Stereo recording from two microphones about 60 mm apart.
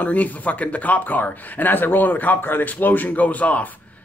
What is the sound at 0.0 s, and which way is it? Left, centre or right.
Speech, left.